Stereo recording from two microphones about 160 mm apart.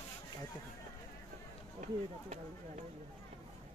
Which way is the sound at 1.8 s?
45° right (ahead or behind).